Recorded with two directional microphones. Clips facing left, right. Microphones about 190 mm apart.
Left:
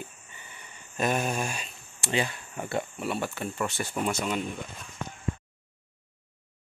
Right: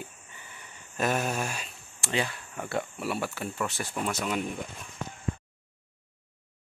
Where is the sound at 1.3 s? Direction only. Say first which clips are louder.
Left 1 dB; 5° right (ahead or behind).